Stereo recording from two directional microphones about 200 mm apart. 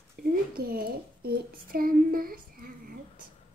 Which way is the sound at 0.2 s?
50° right (ahead or behind).